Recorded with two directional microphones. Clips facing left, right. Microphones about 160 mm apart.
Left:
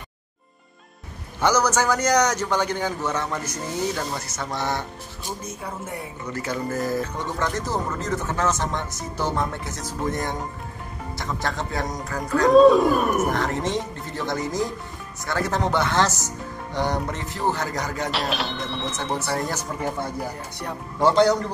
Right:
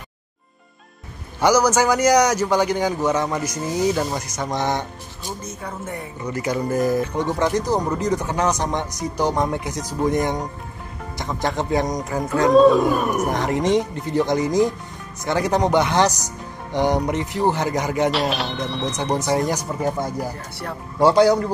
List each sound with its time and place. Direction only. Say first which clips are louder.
1.4 s speech: right 4 dB; 10° right (ahead or behind)
6.2 s speech: right 5 dB; 15° right (ahead or behind)
11.1 s music: right 5 dB; 20° right (ahead or behind)
12.4 s speech: even; centre (ahead or behind)
13.3 s speech: right 5 dB; 15° right (ahead or behind)
16.7 s music: right 6 dB; 20° right (ahead or behind)
18.1 s speech: right 4 dB; centre (ahead or behind)
19.2 s speech: right 6 dB; 15° right (ahead or behind)
21.0 s speech: right 3 dB; 10° right (ahead or behind)